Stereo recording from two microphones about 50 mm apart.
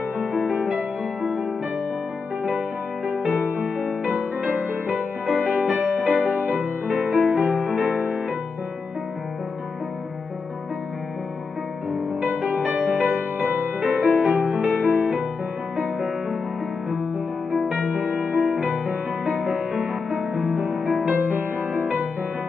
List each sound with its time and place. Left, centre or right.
0.4 s music: centre
3.4 s music: right
6.9 s music: right
7.2 s music: right
7.5 s music: right
12.6 s music: right
13.6 s music: right
18.0 s music: right
18.3 s music: centre
19.3 s music: right
20.7 s music: centre
21.1 s music: right